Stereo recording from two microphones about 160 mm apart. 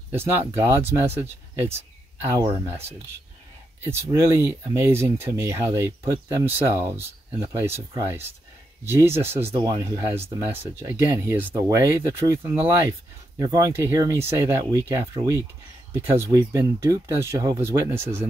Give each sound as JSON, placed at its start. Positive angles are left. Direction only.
{"t": 0.1, "sound": "speech", "side_deg": -15}
{"t": 3.8, "sound": "speech", "side_deg": -15}